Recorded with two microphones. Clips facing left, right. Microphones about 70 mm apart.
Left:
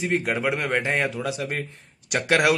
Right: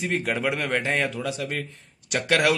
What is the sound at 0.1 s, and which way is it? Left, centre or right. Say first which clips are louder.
A man's voice: left 1 dB; centre.